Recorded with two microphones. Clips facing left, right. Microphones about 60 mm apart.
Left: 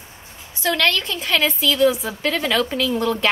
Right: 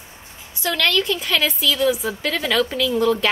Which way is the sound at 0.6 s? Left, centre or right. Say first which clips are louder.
Left 1 dB; left.